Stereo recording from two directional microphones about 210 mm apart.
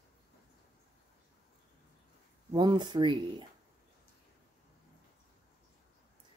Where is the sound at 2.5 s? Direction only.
20° right (ahead or behind).